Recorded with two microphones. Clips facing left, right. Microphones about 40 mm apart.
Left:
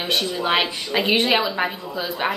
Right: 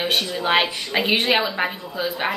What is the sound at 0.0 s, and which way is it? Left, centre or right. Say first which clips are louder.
A woman's voice: even; centre.